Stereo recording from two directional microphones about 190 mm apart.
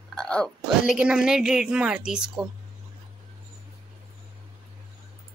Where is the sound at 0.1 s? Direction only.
5° left (ahead or behind).